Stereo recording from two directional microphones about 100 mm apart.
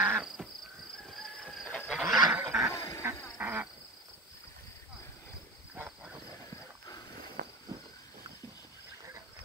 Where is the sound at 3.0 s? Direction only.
30° right (ahead or behind).